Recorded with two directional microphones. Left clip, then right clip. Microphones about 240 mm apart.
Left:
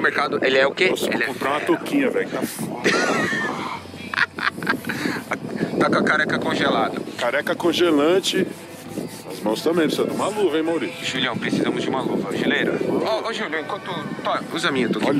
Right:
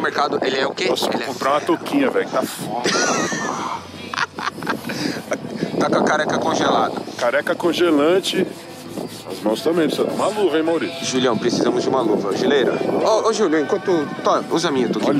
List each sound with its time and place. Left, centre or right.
0.0 s speech: centre
11.1 s speech: centre